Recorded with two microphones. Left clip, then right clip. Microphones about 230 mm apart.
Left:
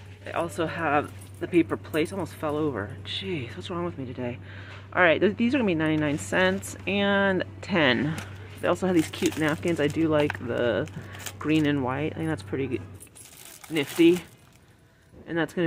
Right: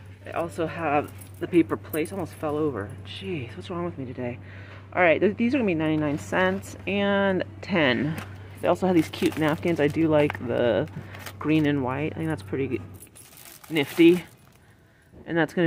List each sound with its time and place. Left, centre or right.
0.2 s speech: centre
15.2 s speech: centre